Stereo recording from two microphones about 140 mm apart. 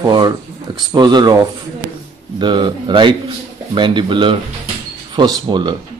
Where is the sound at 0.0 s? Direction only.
30° right (ahead or behind).